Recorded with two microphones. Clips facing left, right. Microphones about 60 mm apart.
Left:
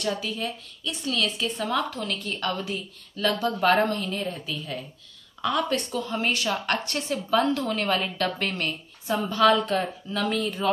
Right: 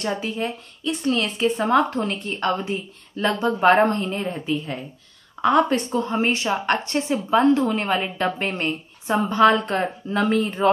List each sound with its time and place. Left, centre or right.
0.0 s a woman's voice: right